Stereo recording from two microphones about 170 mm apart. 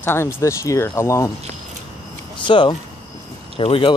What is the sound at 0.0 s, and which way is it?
Speech, 15° left (ahead or behind).